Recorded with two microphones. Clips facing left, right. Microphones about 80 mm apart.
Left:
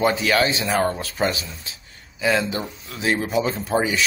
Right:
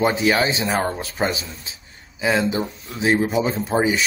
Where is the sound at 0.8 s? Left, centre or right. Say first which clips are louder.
Left 1 dB; centre.